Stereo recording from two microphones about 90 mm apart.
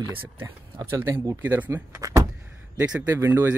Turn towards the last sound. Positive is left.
turn(degrees=-30)  # may be behind; listen again after turning